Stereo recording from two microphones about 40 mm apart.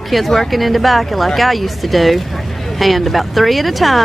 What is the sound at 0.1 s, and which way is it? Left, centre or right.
Speech, centre.